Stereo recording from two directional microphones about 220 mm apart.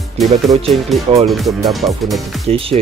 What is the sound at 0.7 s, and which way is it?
Speech, centre (ahead or behind).